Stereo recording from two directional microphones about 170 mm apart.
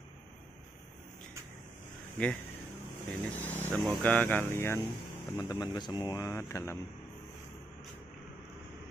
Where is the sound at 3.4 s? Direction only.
10° left (ahead or behind).